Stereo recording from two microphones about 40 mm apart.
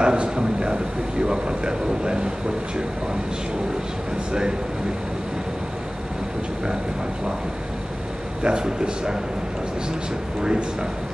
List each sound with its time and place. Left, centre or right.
0.0 s a sound: right
1.2 s speech: right
4.3 s speech: centre
8.4 s speech: right
10.4 s speech: right